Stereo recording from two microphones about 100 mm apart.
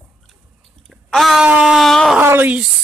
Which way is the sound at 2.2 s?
20° right (ahead or behind).